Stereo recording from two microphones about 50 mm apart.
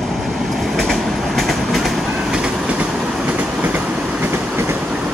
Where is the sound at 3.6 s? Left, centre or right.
Right.